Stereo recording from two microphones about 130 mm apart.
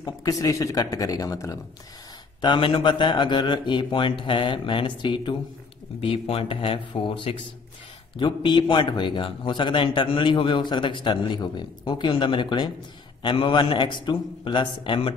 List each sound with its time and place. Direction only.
0.0 s speech: 30° left (ahead or behind)
2.4 s a man's voice: 40° left (ahead or behind)
5.9 s a man's voice: 50° left (ahead or behind)